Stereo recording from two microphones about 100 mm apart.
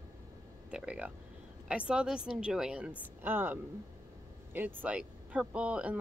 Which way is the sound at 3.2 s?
20° right (ahead or behind).